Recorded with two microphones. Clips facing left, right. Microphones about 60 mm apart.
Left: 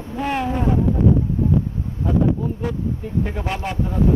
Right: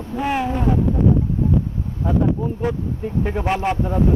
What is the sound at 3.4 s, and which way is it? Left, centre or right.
Speech, right.